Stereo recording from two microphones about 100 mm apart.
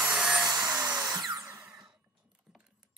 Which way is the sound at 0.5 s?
40° right (ahead or behind).